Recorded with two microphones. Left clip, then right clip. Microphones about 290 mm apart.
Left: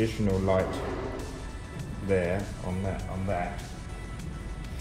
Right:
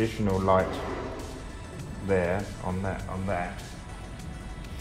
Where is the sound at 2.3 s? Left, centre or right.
Centre.